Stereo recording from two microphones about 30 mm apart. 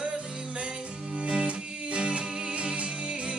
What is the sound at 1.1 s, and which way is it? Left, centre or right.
Music, right.